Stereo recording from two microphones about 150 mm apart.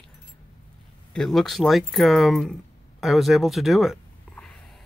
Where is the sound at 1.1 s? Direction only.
Centre (ahead or behind).